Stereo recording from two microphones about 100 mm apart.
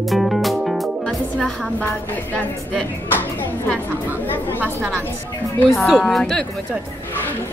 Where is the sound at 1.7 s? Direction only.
15° left (ahead or behind).